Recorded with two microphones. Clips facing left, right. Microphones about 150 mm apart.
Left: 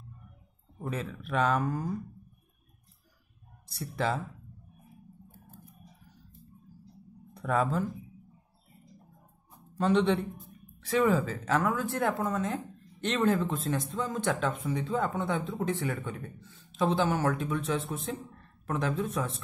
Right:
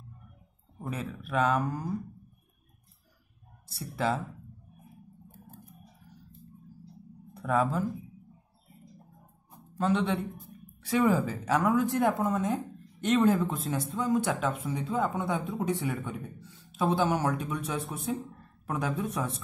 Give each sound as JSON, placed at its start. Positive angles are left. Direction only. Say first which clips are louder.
{"t": 0.8, "sound": "speech", "louder": "left 1 dB", "side_deg": -5}
{"t": 3.7, "sound": "speech", "louder": "right 1 dB", "side_deg": -5}
{"t": 7.3, "sound": "speech", "louder": "right 1 dB", "side_deg": -5}
{"t": 9.8, "sound": "speech", "louder": "left 2 dB", "side_deg": -5}
{"t": 11.4, "sound": "a woman's voice", "louder": "right 6 dB", "side_deg": -15}